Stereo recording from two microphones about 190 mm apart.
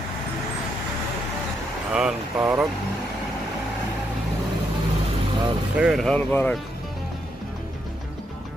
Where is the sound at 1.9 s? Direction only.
5° right (ahead or behind).